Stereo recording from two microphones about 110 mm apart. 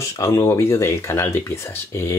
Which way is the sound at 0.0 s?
30° left (ahead or behind).